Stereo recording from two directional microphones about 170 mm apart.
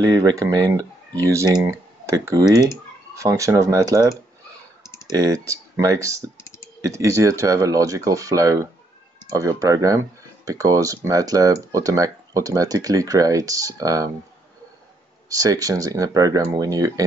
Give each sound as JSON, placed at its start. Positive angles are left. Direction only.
{"t": 0.0, "sound": "speech", "side_deg": -20}
{"t": 15.2, "sound": "speech", "side_deg": -20}